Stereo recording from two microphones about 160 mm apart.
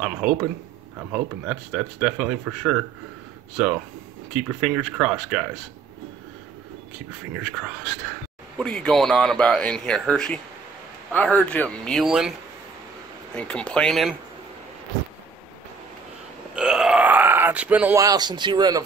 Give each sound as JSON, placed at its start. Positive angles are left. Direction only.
{"t": 0.0, "sound": "speech", "side_deg": -5}
{"t": 7.4, "sound": "speech", "side_deg": -5}
{"t": 13.3, "sound": "speech", "side_deg": 10}
{"t": 16.5, "sound": "burping", "side_deg": -5}
{"t": 17.9, "sound": "speech", "side_deg": -25}